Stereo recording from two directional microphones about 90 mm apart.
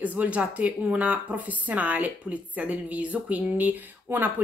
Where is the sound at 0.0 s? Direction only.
15° right (ahead or behind).